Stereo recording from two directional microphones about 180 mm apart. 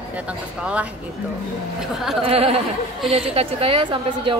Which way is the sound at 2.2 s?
30° right (ahead or behind).